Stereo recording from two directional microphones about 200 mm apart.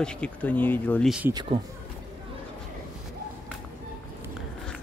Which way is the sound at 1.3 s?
20° right (ahead or behind).